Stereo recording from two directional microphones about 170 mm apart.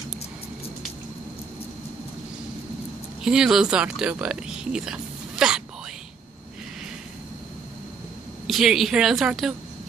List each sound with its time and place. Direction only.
3.2 s speech: 5° right (ahead or behind)
8.5 s speech: centre (ahead or behind)